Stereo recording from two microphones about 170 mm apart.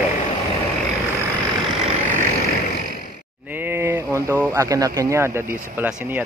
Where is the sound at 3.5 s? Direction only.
15° right (ahead or behind).